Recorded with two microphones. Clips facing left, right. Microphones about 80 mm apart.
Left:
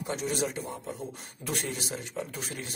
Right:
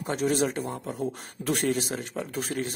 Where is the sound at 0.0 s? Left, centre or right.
Right.